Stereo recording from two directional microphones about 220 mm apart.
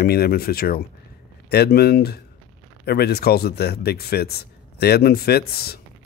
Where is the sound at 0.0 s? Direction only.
45° left (ahead or behind).